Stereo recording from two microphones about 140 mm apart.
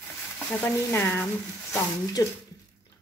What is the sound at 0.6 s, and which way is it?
Speech, 15° left (ahead or behind).